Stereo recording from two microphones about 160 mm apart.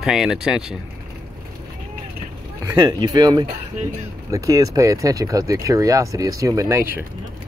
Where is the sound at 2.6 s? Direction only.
25° right (ahead or behind).